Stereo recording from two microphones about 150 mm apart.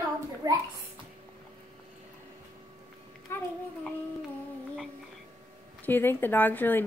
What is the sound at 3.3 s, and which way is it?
Speech, 15° left (ahead or behind).